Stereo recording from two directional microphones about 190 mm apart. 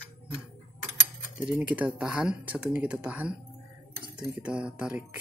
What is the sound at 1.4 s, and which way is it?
Speech, 10° right (ahead or behind).